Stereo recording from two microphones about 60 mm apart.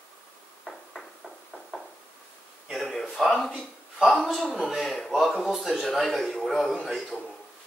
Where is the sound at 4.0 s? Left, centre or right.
Centre.